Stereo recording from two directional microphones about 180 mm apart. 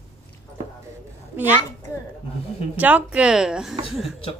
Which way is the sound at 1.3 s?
10° right (ahead or behind).